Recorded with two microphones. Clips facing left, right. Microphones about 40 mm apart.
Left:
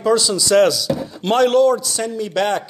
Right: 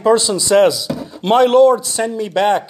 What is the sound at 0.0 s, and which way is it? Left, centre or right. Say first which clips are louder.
Speech: right 3 dB; right.